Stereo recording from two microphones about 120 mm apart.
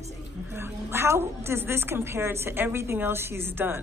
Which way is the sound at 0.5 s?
20° right (ahead or behind).